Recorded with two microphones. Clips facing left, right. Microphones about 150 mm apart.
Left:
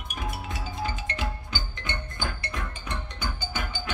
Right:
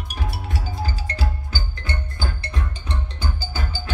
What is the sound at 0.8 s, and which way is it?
Music, 35° right (ahead or behind).